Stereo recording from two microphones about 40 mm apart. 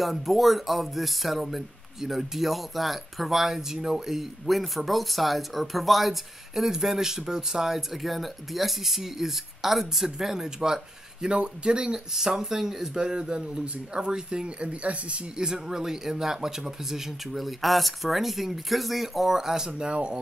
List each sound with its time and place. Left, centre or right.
0.0 s speech: centre; by 12.0 s right
12.1 s a man's voice: centre; by 15.4 s right
15.4 s speech: centre
19.7 s a man's voice: right